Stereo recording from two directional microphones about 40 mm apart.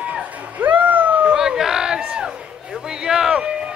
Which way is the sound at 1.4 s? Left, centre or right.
Centre.